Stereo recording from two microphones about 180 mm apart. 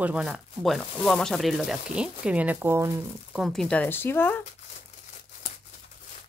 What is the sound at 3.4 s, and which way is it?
Speech, 5° left (ahead or behind).